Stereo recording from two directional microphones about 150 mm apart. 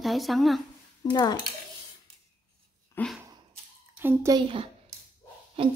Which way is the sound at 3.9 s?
15° right (ahead or behind).